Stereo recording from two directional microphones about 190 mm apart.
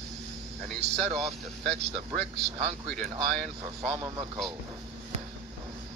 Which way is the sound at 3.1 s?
30° right (ahead or behind).